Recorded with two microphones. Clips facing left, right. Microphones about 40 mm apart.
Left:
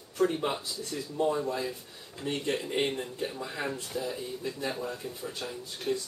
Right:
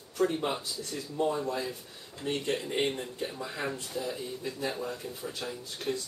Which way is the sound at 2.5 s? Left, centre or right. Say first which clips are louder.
Left 1 dB; centre.